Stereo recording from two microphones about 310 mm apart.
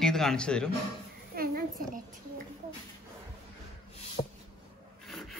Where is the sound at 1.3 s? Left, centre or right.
Right.